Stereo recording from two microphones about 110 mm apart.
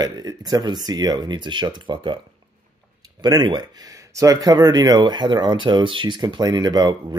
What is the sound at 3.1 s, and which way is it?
Speech, 40° right (ahead or behind).